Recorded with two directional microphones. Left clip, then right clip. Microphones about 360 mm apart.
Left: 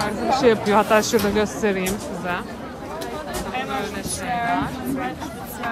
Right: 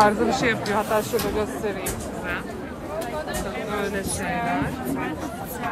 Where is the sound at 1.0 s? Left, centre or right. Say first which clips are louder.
Left 4 dB; left.